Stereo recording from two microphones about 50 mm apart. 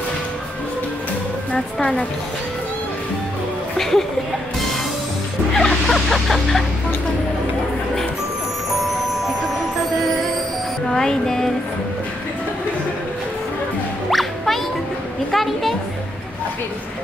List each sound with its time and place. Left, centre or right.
1.5 s a woman's voice: left
3.7 s speech: centre
5.5 s music: centre
10.9 s music: centre
14.1 s music: centre
15.3 s a sound: centre